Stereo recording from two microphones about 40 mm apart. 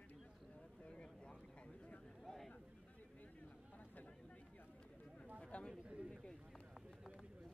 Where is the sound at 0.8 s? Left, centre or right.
Left.